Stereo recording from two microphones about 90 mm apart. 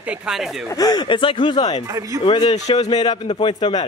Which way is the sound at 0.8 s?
45° left (ahead or behind).